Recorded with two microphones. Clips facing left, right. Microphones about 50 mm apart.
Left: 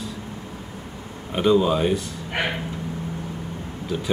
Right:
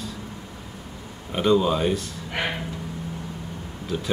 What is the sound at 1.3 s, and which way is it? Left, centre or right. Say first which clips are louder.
Speech: left 2 dB; centre.